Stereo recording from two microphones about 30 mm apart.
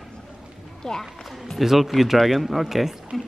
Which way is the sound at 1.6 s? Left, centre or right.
Centre.